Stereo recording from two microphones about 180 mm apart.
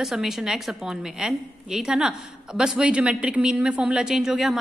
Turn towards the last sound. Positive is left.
turn(degrees=0)  # may be behind; listen again after turning